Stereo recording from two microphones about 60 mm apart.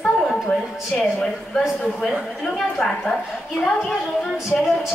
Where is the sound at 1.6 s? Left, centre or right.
Centre.